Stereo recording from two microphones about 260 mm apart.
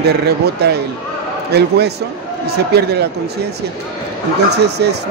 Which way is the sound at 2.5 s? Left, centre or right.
Right.